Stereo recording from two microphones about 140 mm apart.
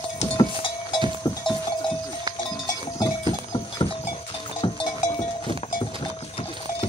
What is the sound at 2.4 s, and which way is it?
Goat, 30° left (ahead or behind).